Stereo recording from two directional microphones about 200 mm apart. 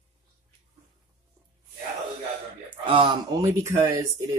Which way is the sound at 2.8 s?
25° right (ahead or behind).